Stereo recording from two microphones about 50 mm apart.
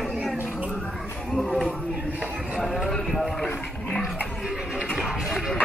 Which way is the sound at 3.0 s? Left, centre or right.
Centre.